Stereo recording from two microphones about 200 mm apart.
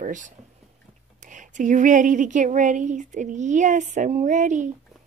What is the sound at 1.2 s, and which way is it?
Speech, 40° right (ahead or behind).